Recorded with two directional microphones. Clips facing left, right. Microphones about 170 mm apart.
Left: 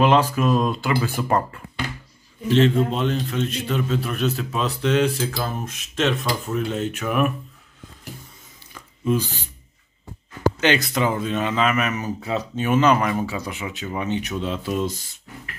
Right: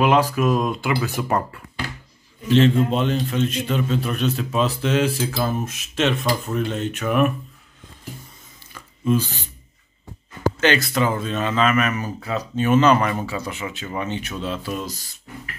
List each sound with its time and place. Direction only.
0.0 s speech: 10° right (ahead or behind)
2.5 s a man's voice: centre (ahead or behind)
8.7 s a sound: 15° left (ahead or behind)
10.6 s speech: 15° left (ahead or behind)
12.6 s speech: 10° left (ahead or behind)